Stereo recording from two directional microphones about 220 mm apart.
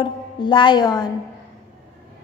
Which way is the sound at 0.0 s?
20° left (ahead or behind).